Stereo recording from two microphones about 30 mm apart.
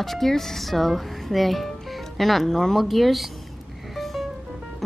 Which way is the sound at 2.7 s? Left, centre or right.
Centre.